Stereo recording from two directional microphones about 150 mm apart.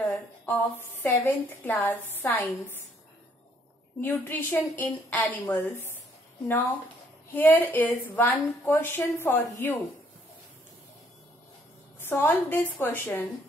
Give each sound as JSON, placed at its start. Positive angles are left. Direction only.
{"t": 0.0, "sound": "a woman's voice", "side_deg": 10}
{"t": 4.0, "sound": "a woman's voice", "side_deg": 10}
{"t": 7.3, "sound": "a woman's voice", "side_deg": 10}
{"t": 12.0, "sound": "a woman's voice", "side_deg": 15}